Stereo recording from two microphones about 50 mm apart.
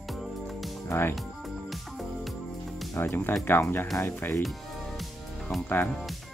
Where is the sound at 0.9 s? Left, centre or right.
Left.